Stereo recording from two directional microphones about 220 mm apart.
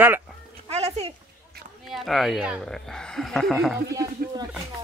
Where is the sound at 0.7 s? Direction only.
30° right (ahead or behind).